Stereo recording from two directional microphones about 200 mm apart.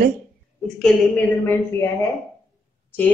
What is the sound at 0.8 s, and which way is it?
Speech, 5° left (ahead or behind).